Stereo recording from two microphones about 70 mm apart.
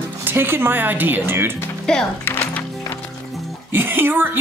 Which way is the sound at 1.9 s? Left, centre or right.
Centre.